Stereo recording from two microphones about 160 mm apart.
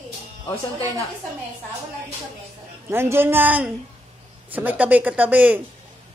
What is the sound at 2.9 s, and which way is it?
Speech, 15° right (ahead or behind).